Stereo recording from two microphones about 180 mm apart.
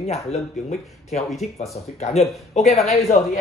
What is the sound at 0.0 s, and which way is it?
Speech, 40° left (ahead or behind).